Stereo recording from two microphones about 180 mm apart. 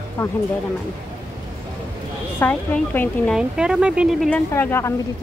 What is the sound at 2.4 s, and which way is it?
Speech, 10° left (ahead or behind).